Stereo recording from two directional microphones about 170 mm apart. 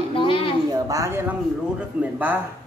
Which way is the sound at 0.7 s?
20° right (ahead or behind).